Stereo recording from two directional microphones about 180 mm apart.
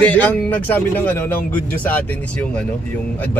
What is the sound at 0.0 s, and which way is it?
Speech, 10° left (ahead or behind).